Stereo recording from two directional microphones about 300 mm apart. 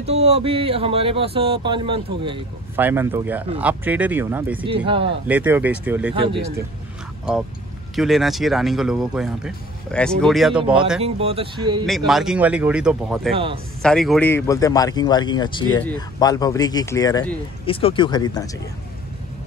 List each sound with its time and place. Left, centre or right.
0.0 s speech: right
4.6 s speech: centre
5.3 s speech: centre
6.1 s speech: centre
7.9 s speech: centre
11.0 s speech: centre
12.1 s speech: centre